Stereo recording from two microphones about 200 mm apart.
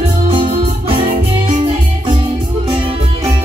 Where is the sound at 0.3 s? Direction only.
25° right (ahead or behind).